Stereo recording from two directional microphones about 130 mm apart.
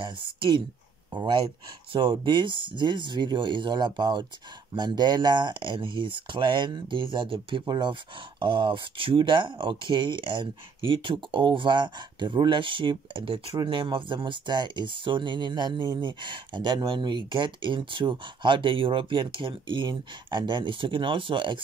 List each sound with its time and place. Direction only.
0.0 s speech: 40° right (ahead or behind)